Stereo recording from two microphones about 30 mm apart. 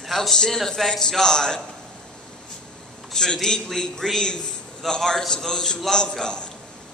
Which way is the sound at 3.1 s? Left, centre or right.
Centre.